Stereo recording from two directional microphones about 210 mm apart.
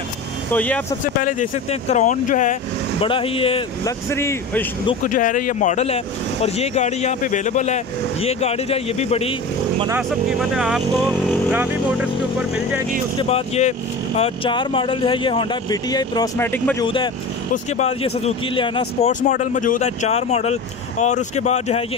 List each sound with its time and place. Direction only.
0.5 s speech: 5° left (ahead or behind)
1.0 s speech: 40° left (ahead or behind)
3.0 s speech: 25° left (ahead or behind)
4.1 s speech: 10° left (ahead or behind)
5.0 s speech: 40° left (ahead or behind)
10.5 s speech: 5° right (ahead or behind)
13.2 s speech: 30° left (ahead or behind); by 16.8 s 10° left (ahead or behind)
16.8 s speech: 25° left (ahead or behind)
19.2 s speech: 35° left (ahead or behind)